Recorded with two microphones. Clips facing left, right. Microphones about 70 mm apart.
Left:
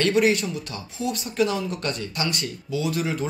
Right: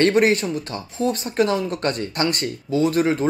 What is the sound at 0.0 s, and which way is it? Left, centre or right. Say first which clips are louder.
Speech: right 3 dB; right.